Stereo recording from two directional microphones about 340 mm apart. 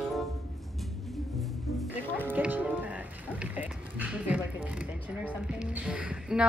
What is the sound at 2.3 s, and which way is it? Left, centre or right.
Music, centre.